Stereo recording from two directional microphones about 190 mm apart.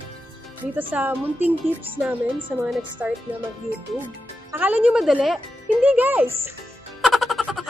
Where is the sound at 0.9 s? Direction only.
10° right (ahead or behind).